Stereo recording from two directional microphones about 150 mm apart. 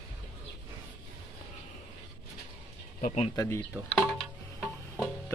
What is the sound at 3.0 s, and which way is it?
Speech, 45° left (ahead or behind).